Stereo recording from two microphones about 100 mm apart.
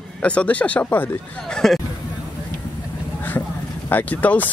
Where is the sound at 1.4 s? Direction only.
5° left (ahead or behind).